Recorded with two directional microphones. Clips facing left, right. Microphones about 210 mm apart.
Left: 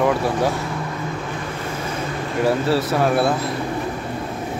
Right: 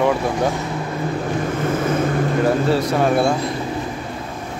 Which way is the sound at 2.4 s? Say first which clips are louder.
Left 1 dB; 5° left (ahead or behind).